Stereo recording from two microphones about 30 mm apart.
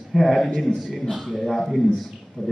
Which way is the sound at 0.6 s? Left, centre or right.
Centre.